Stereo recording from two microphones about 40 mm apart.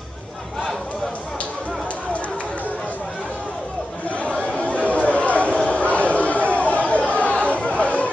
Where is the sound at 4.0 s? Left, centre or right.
Left.